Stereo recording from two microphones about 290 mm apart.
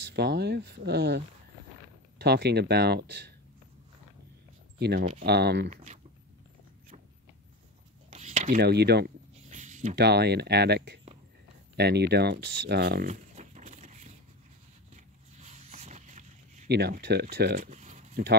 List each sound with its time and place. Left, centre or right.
0.1 s speech: right
4.7 s speech: right
8.1 s speech: right
12.6 s a sound: right
15.3 s zipper: right